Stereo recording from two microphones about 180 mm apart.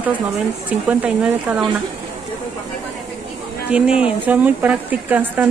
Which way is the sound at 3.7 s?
5° right (ahead or behind).